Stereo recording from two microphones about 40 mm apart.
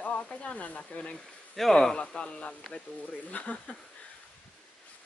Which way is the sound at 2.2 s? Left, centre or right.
Left.